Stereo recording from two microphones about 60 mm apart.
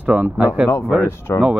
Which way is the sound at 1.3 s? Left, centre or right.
Left.